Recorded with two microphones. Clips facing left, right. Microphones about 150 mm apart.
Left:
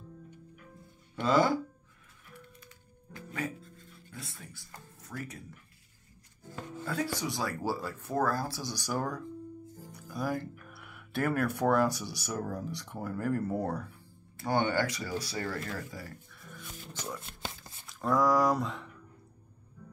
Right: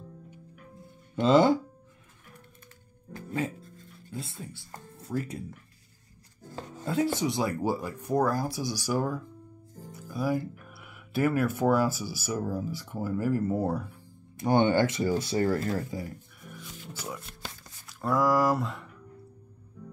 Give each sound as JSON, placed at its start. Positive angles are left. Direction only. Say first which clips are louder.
{"t": 1.2, "sound": "speech", "louder": "right 5 dB", "side_deg": -25}
{"t": 4.1, "sound": "speech", "louder": "right 8 dB", "side_deg": -25}
{"t": 6.5, "sound": "speech", "louder": "right 5 dB", "side_deg": -25}
{"t": 15.9, "sound": "speech", "louder": "right 8 dB", "side_deg": -20}
{"t": 16.9, "sound": "speech", "louder": "right 1 dB", "side_deg": -10}
{"t": 17.4, "sound": "shuffling cards", "louder": "left 1 dB", "side_deg": 25}
{"t": 17.8, "sound": "speech", "louder": "right 1 dB", "side_deg": 0}